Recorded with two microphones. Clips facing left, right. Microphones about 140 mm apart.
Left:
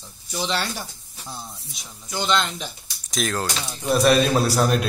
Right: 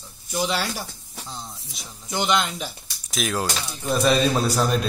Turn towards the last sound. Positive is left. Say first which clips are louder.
# left 2 dB
turn(degrees=5)  # may be behind; listen again after turning